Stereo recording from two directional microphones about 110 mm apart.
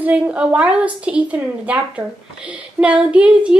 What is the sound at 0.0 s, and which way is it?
A woman's voice, 10° right (ahead or behind).